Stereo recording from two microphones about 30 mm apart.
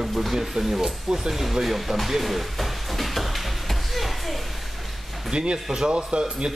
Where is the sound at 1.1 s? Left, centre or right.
Centre.